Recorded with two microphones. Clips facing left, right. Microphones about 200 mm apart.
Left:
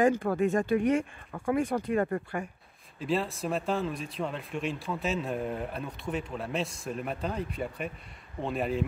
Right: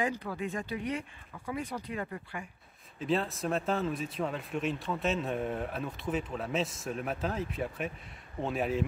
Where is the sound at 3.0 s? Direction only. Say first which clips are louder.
Left 1 dB; centre (ahead or behind).